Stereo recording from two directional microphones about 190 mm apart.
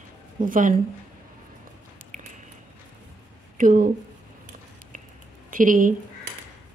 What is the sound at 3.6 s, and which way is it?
Speech, 45° right (ahead or behind).